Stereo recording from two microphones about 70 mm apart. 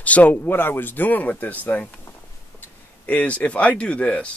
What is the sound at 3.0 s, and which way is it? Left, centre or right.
Speech, centre.